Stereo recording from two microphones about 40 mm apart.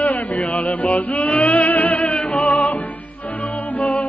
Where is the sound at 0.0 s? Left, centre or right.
Left.